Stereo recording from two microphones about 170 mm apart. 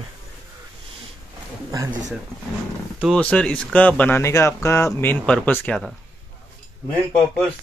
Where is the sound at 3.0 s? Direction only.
5° left (ahead or behind).